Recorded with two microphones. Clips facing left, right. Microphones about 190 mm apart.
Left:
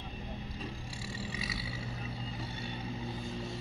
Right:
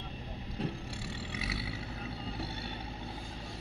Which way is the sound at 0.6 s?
65° right (ahead or behind).